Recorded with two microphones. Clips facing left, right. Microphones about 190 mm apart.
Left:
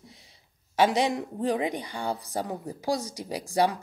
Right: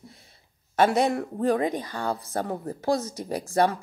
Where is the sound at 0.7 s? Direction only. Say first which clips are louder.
Right 2 dB; 55° right (ahead or behind).